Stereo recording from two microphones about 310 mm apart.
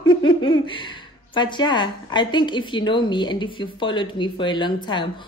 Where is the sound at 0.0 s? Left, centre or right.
Centre.